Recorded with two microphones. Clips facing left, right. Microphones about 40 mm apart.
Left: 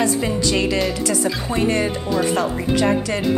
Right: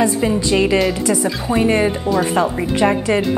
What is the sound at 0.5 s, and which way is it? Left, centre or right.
Speech, right.